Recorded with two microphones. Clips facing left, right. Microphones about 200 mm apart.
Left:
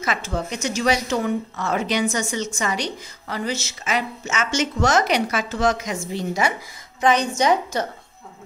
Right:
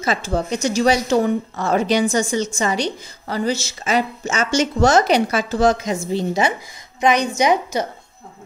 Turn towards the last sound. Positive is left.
turn(degrees=-10)  # may be behind; listen again after turning